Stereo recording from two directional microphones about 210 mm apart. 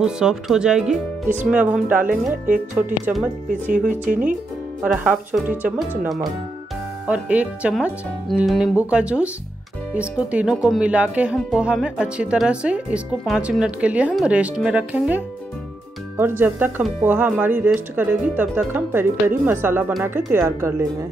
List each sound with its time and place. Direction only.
0.0 s speech: 5° right (ahead or behind)
3.7 s speech: 40° right (ahead or behind)
4.8 s speech: 5° right (ahead or behind)